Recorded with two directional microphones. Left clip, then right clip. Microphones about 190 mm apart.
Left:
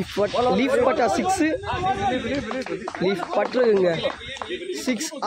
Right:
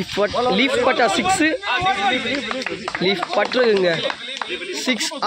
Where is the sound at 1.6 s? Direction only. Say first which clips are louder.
Right 5 dB; 30° right (ahead or behind).